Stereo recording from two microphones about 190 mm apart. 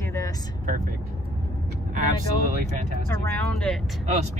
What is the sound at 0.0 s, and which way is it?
Vehicle, 15° left (ahead or behind).